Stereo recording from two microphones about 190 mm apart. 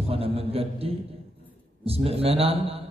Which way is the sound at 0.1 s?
30° right (ahead or behind).